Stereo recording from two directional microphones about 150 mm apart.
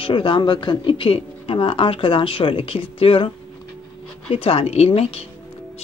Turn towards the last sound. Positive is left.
turn(degrees=40)  # may be behind; listen again after turning